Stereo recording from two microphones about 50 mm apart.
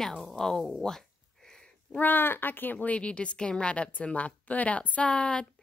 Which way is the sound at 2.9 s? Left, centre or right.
Left.